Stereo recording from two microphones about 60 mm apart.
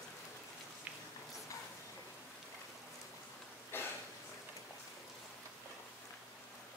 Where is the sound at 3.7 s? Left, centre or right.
Left.